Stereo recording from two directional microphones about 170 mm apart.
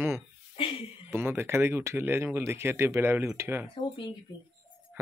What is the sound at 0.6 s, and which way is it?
Speech, 30° left (ahead or behind).